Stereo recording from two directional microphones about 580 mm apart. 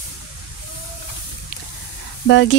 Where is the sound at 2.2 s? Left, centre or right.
Centre.